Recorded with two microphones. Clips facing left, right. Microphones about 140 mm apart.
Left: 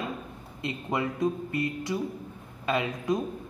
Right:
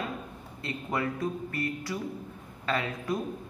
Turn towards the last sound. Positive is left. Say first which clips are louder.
# left 3 dB
turn(degrees=15)  # may be behind; listen again after turning